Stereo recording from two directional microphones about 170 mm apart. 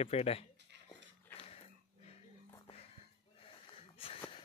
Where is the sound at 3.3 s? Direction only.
35° left (ahead or behind).